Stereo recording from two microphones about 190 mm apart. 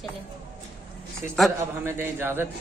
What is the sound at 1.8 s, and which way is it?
Speech, 10° right (ahead or behind).